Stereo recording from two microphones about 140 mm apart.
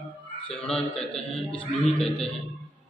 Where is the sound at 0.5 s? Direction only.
5° left (ahead or behind).